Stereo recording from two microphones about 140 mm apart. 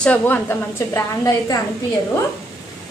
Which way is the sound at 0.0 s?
10° left (ahead or behind).